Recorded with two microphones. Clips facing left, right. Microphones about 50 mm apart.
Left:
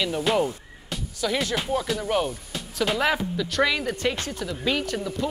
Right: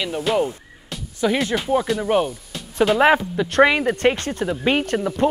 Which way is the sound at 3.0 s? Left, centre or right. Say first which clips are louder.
Right 8 dB; right.